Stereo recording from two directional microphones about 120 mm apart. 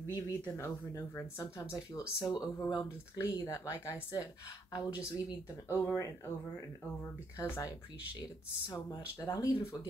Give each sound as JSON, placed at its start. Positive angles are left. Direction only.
{"t": 0.0, "sound": "speech", "side_deg": 25}
{"t": 7.3, "sound": "speech", "side_deg": 20}